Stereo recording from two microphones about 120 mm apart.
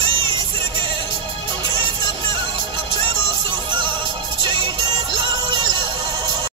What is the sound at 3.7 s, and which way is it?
Music, 40° right (ahead or behind).